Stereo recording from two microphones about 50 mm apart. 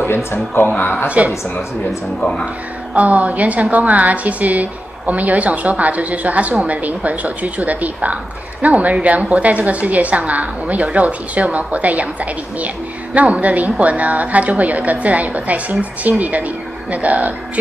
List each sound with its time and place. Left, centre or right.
0.0 s speech: left
1.0 s a woman's voice: right
2.1 s speech: centre
2.9 s a woman's voice: right